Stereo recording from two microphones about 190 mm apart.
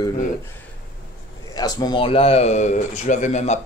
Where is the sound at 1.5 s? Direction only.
20° left (ahead or behind).